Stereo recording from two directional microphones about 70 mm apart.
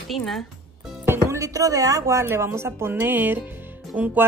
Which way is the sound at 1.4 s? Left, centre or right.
Right.